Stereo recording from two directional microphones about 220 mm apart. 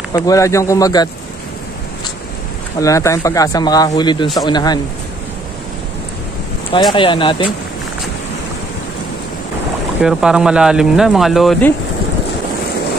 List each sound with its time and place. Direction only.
0.1 s speech: 15° left (ahead or behind)
2.8 s speech: 15° left (ahead or behind)
6.9 s speech: 20° left (ahead or behind)
10.0 s speech: 5° right (ahead or behind)